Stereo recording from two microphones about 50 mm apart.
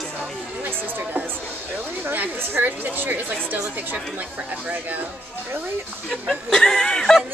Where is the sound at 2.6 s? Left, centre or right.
Right.